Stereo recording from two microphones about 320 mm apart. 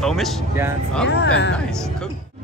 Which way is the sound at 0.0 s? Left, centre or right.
Centre.